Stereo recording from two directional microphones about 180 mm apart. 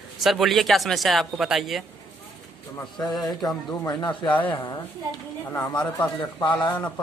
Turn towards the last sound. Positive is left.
turn(degrees=25)  # may be behind; listen again after turning